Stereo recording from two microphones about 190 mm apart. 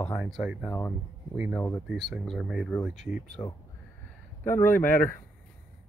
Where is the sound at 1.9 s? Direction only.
Centre (ahead or behind).